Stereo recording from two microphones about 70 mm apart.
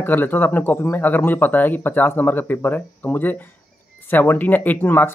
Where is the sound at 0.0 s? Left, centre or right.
Left.